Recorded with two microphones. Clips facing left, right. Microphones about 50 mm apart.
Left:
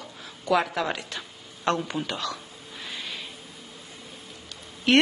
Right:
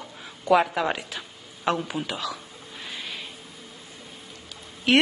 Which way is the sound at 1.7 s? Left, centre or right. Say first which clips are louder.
Even; centre.